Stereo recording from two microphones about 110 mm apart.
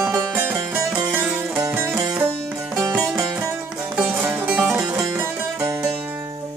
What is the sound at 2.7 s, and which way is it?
Music, 25° right (ahead or behind).